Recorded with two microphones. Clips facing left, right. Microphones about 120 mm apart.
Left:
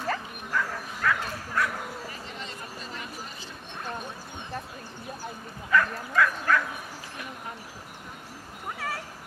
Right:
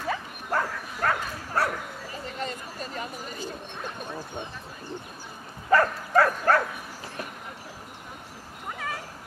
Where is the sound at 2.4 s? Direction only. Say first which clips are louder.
Right 5 dB; 45° right (ahead or behind).